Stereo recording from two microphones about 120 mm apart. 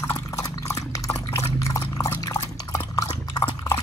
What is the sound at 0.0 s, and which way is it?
Drip, 25° left (ahead or behind).